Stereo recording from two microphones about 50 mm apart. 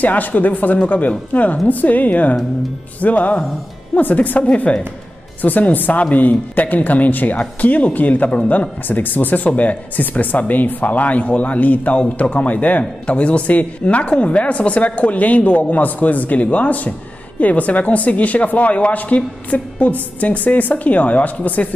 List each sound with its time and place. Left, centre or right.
0.0 s a woman's voice: left